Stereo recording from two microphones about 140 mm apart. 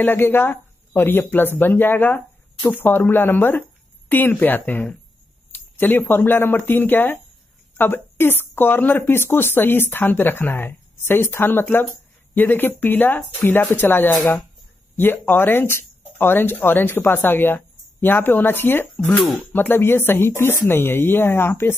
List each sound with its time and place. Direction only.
0.0 s speech: 15° left (ahead or behind)